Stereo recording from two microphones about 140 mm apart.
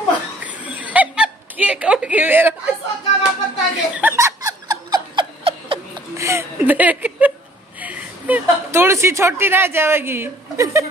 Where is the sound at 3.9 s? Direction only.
15° right (ahead or behind).